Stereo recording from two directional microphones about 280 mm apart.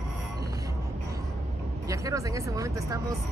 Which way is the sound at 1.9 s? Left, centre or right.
Centre.